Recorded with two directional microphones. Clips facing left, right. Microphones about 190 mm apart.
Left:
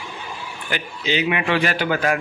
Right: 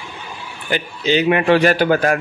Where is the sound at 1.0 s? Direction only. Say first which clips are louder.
Right 7 dB; 45° right (ahead or behind).